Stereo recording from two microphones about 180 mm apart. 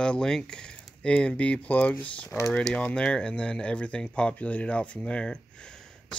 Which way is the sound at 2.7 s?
5° left (ahead or behind).